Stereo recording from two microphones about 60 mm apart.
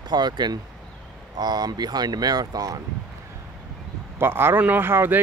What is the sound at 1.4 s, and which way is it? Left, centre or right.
Speech, right.